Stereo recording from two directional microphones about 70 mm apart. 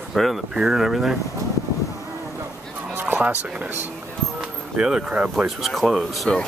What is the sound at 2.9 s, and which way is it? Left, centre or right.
Fowl, right.